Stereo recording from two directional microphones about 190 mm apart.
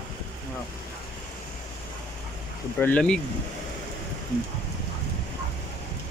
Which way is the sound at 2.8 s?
5° left (ahead or behind).